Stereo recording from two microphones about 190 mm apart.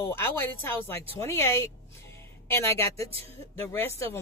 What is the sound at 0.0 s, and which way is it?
A woman's voice, 10° left (ahead or behind).